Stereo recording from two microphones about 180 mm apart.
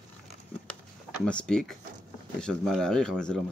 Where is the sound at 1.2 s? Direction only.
5° left (ahead or behind).